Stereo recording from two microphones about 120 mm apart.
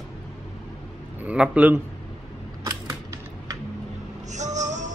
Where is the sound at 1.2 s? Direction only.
10° right (ahead or behind).